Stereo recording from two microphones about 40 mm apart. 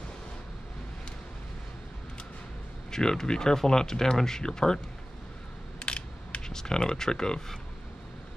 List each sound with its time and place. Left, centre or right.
2.9 s speech: centre
5.8 s a sound: left
6.4 s speech: centre